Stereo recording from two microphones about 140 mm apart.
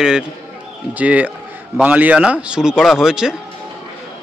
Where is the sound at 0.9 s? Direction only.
10° right (ahead or behind).